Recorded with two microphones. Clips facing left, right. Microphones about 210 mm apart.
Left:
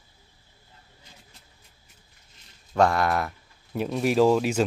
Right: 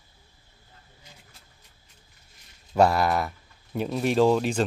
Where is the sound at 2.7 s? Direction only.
5° right (ahead or behind).